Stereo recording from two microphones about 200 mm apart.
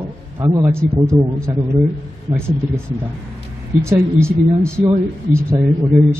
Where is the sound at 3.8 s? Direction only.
15° right (ahead or behind).